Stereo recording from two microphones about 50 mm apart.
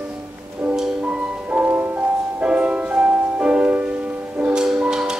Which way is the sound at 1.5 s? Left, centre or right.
Right.